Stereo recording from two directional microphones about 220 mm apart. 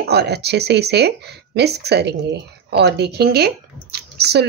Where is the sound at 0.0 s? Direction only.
50° right (ahead or behind).